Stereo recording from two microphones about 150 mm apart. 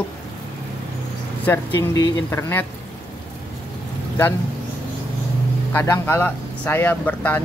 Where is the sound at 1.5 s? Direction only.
15° left (ahead or behind).